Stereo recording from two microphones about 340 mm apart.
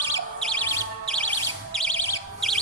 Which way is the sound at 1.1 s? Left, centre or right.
Centre.